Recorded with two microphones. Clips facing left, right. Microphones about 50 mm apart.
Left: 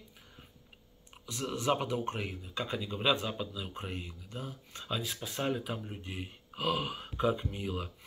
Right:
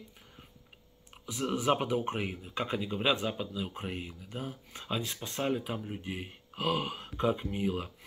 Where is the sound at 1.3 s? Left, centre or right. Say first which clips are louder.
Right 3 dB; centre.